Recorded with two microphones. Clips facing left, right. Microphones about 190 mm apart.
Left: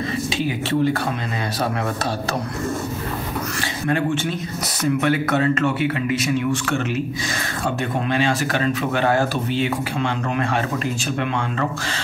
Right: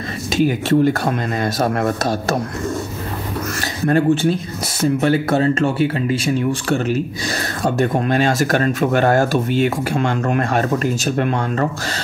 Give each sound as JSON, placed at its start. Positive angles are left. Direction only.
{"t": 0.3, "sound": "speech", "side_deg": -45}
{"t": 3.8, "sound": "speech", "side_deg": -35}